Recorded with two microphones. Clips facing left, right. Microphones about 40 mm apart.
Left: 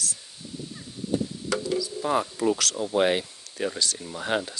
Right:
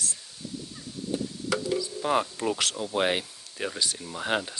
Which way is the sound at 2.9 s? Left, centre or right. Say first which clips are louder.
Left 4 dB; centre.